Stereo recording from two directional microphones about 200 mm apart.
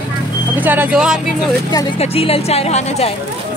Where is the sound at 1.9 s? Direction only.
30° left (ahead or behind).